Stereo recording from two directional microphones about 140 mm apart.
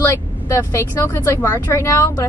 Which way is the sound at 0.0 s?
20° left (ahead or behind).